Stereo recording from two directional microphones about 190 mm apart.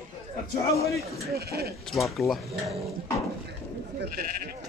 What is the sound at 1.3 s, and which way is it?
Speech, 55° right (ahead or behind).